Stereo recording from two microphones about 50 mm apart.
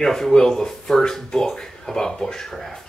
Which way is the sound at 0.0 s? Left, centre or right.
Centre.